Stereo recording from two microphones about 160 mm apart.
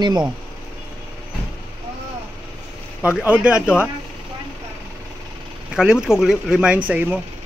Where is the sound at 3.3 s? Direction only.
10° right (ahead or behind).